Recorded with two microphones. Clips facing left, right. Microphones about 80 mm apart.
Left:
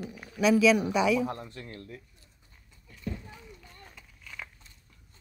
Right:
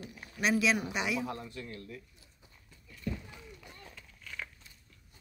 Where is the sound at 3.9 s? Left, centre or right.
Centre.